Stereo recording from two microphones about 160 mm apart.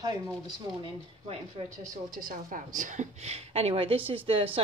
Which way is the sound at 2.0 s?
60° right (ahead or behind).